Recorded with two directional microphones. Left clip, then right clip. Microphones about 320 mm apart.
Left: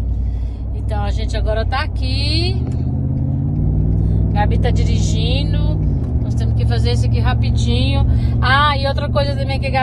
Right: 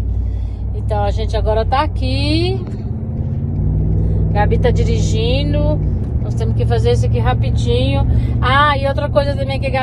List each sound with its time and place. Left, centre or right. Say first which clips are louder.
0.9 s speech: right 6 dB; centre
4.0 s speech: right 3 dB; right; by 9.8 s centre